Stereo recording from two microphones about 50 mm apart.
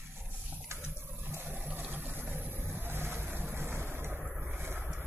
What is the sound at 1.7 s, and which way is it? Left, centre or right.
Boat, right.